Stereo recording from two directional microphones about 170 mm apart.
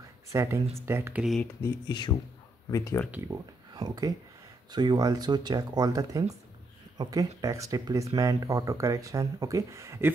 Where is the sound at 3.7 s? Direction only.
25° right (ahead or behind).